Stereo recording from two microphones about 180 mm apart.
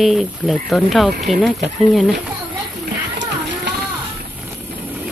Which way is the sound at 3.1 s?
80° right.